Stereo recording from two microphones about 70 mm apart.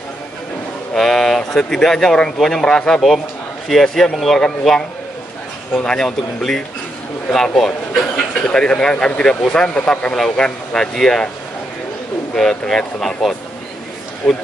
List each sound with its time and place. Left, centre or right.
0.9 s speech: centre
5.9 s speech: centre
12.4 s speech: centre